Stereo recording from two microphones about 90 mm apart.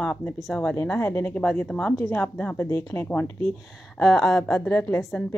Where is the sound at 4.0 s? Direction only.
Centre (ahead or behind).